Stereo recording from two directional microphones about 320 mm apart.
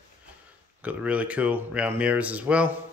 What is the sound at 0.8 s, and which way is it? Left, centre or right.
Speech, centre.